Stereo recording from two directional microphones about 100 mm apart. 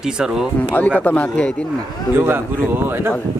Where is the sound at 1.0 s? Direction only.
15° left (ahead or behind).